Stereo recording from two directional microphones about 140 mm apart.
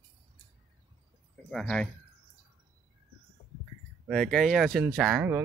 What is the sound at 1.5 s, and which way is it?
Speech, 5° left (ahead or behind).